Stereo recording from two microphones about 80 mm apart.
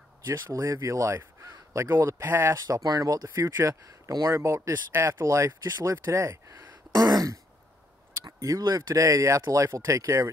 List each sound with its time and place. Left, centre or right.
0.3 s speech: right
2.5 s speech: right
5.2 s speech: right
7.0 s speech: right